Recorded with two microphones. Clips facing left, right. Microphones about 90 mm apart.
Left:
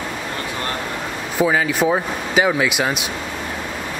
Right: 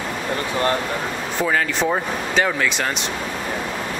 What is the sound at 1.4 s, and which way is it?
Speech, 5° left (ahead or behind).